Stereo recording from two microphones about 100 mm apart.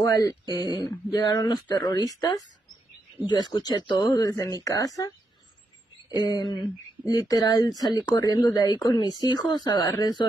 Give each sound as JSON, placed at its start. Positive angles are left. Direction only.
{"t": 0.0, "sound": "speech", "side_deg": 35}
{"t": 6.2, "sound": "speech", "side_deg": 50}